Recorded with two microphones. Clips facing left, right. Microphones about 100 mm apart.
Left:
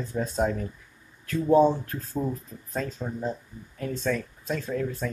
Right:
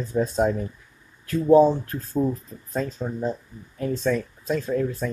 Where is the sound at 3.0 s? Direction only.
20° right (ahead or behind).